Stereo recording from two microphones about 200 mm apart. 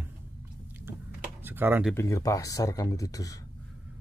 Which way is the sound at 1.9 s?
15° left (ahead or behind).